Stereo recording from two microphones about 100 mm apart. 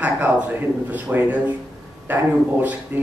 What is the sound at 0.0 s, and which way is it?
A man's voice, 15° right (ahead or behind).